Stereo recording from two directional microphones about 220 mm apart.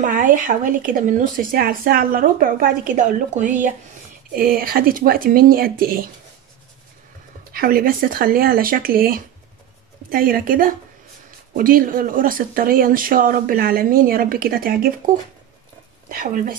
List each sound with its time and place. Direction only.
0.0 s speech: 35° right (ahead or behind)
7.5 s speech: 40° right (ahead or behind)
16.1 s speech: 40° right (ahead or behind)